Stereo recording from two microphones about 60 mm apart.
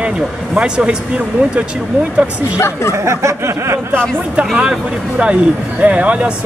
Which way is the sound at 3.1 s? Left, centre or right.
Right.